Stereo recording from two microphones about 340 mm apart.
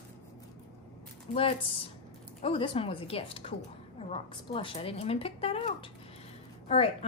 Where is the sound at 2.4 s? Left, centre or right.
Centre.